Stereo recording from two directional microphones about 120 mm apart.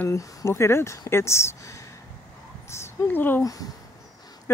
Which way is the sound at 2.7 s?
20° left (ahead or behind).